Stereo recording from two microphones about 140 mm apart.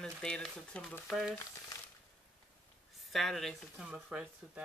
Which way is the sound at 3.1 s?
Centre (ahead or behind).